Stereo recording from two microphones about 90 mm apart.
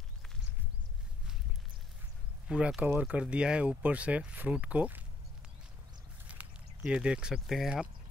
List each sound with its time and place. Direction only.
2.4 s speech: 10° right (ahead or behind)
6.3 s a sound: 15° right (ahead or behind)
6.8 s speech: 10° right (ahead or behind)